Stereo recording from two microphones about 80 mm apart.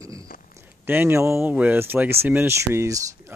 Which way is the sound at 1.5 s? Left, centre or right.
Centre.